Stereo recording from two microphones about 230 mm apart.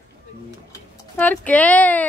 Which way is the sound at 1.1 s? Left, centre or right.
Centre.